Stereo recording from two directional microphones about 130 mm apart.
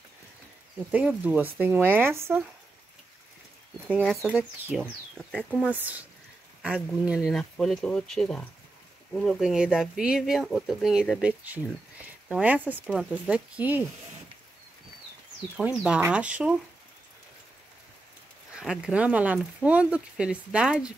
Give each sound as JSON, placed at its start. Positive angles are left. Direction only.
{"t": 0.9, "sound": "speech", "side_deg": -10}
{"t": 4.0, "sound": "speech", "side_deg": 0}
{"t": 4.4, "sound": "speech", "side_deg": -15}
{"t": 5.1, "sound": "speech", "side_deg": 5}
{"t": 5.7, "sound": "speech", "side_deg": -15}
{"t": 15.5, "sound": "speech", "side_deg": -5}
{"t": 18.5, "sound": "speech", "side_deg": -5}